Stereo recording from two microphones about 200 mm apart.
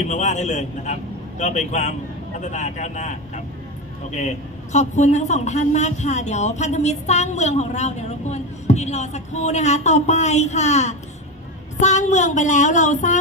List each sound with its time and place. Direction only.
0.0 s a man's voice: 35° left (ahead or behind)
4.7 s a man's voice: 35° left (ahead or behind)